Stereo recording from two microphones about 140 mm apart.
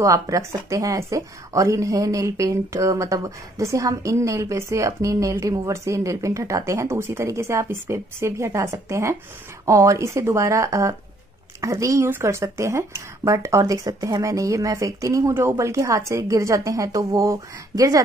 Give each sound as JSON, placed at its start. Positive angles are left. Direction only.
{"t": 0.0, "sound": "a woman's voice", "side_deg": -20}